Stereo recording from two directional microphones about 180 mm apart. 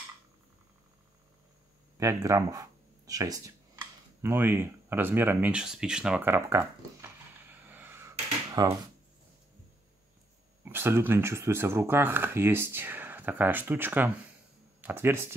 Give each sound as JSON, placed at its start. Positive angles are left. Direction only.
{"t": 2.0, "sound": "speech", "side_deg": -20}
{"t": 4.2, "sound": "a sound", "side_deg": -10}
{"t": 10.6, "sound": "speech", "side_deg": -10}